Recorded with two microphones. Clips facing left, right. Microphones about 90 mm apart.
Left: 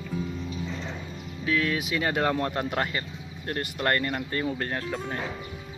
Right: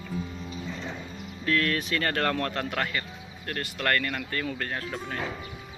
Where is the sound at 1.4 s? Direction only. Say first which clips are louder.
Even; 5° left (ahead or behind); by 5.2 s 30° left (ahead or behind).